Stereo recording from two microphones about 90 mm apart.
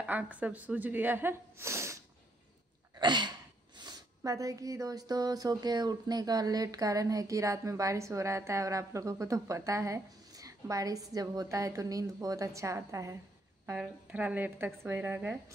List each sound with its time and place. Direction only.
0.0 s speech: 15° right (ahead or behind); by 2.0 s 30° right (ahead or behind)
3.0 s a sound: 55° right (ahead or behind)
4.2 s speech: 40° right (ahead or behind)
13.7 s speech: 15° right (ahead or behind)